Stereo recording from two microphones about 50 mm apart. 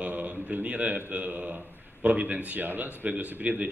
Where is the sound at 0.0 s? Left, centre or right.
Right.